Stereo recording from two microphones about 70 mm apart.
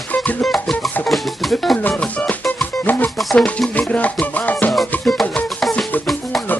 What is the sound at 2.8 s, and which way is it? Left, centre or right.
Music, left.